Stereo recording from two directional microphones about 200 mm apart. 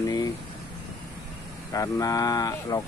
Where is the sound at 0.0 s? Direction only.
20° left (ahead or behind).